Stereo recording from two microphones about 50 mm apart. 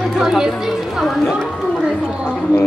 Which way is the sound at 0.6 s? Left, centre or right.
Centre.